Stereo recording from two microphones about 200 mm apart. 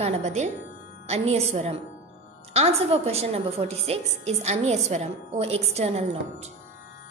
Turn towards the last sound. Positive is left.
turn(degrees=-35)  # may be behind; listen again after turning